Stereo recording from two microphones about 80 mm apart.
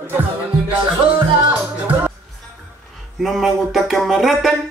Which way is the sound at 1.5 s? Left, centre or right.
Right.